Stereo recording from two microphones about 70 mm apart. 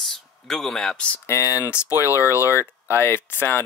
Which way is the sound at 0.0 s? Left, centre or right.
Centre.